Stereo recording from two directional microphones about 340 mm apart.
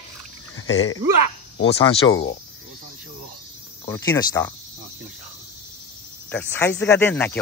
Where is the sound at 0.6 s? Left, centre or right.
Left.